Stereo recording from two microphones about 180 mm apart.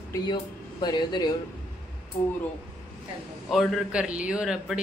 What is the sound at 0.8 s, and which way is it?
Speech, 25° left (ahead or behind).